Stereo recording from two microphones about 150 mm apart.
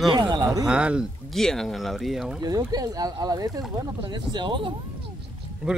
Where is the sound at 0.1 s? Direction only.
30° right (ahead or behind).